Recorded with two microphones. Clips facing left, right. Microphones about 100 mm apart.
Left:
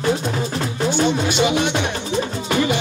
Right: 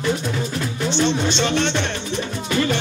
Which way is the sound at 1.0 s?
10° left (ahead or behind).